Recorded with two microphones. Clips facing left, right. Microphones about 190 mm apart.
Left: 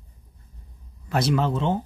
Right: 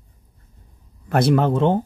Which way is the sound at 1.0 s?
55° right (ahead or behind).